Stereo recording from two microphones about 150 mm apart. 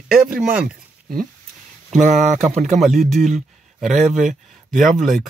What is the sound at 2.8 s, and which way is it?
Speech, centre (ahead or behind).